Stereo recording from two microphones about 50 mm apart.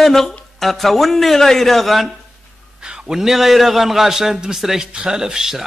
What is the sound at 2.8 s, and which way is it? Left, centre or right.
Speech, centre.